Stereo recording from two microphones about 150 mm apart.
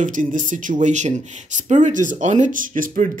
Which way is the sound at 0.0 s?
60° right (ahead or behind).